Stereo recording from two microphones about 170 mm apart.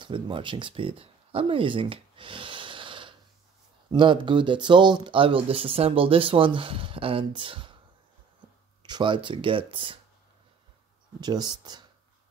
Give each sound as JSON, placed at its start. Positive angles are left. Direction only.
{"t": 0.0, "sound": "speech", "side_deg": -30}
{"t": 8.8, "sound": "speech", "side_deg": -25}
{"t": 11.1, "sound": "speech", "side_deg": -25}